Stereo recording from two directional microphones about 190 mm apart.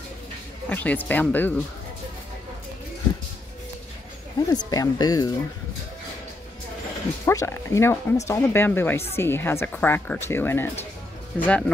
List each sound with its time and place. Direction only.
0.7 s speech: 10° left (ahead or behind)
4.4 s speech: 20° left (ahead or behind)
7.2 s speech: 15° left (ahead or behind)